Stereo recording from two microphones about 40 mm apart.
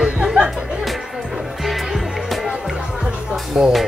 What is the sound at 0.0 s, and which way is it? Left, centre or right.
Music, right.